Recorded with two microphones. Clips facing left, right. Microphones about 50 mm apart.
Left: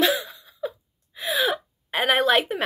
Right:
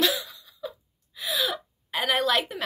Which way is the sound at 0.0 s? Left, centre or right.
Left.